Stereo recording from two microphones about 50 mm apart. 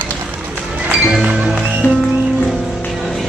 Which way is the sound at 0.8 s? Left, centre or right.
Right.